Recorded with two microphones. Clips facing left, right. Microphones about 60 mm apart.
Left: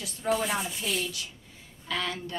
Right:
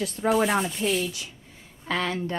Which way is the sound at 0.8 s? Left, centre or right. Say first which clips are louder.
Right 6 dB; centre.